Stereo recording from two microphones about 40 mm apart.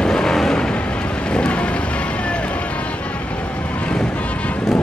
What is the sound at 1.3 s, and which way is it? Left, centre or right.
Vehicle, left.